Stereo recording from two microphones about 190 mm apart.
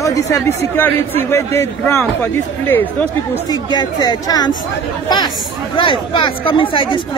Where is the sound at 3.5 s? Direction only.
20° left (ahead or behind).